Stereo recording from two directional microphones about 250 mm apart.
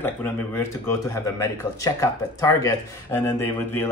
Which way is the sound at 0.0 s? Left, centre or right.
Centre.